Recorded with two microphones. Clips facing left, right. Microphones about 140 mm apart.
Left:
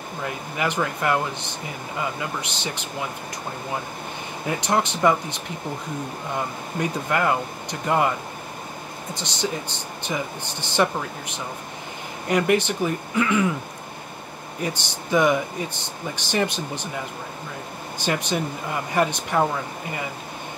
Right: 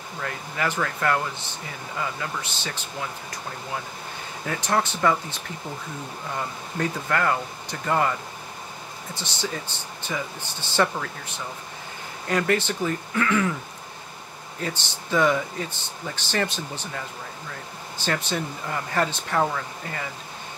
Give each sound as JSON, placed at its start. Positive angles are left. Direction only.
{"t": 0.2, "sound": "speech", "side_deg": 15}
{"t": 4.5, "sound": "speech", "side_deg": 15}
{"t": 9.1, "sound": "speech", "side_deg": 15}
{"t": 14.6, "sound": "speech", "side_deg": 15}
{"t": 17.9, "sound": "speech", "side_deg": 15}